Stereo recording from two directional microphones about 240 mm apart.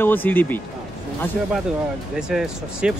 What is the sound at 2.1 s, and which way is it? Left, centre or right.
Speech, centre.